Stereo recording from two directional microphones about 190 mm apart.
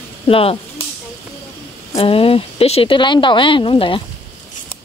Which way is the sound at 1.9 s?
30° left (ahead or behind).